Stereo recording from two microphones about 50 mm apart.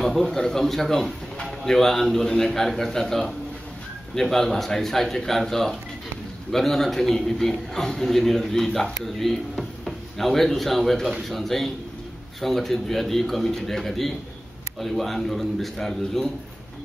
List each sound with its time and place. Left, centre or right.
0.0 s a man's voice: centre